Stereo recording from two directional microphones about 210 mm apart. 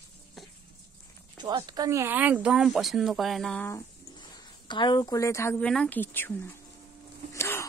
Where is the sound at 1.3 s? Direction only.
20° right (ahead or behind); by 3.7 s 5° left (ahead or behind).